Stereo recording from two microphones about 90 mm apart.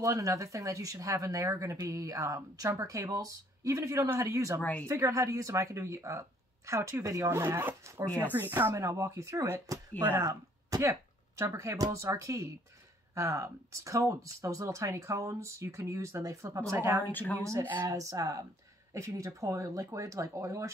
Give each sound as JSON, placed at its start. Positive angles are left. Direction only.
{"t": 0.0, "sound": "speech", "side_deg": -40}
{"t": 4.6, "sound": "speech", "side_deg": 20}
{"t": 4.8, "sound": "speech", "side_deg": -35}
{"t": 17.1, "sound": "speech", "side_deg": 20}
{"t": 17.4, "sound": "speech", "side_deg": -35}